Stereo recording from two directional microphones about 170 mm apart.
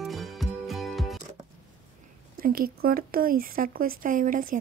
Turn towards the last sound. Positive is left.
turn(degrees=-50)  # may be behind; listen again after turning